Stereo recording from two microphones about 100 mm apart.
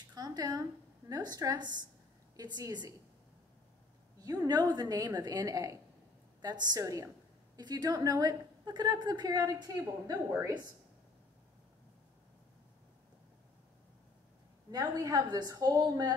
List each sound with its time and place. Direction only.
0.1 s a woman's voice: 40° right (ahead or behind)
4.2 s a woman's voice: 40° right (ahead or behind)
14.7 s a woman's voice: 35° right (ahead or behind)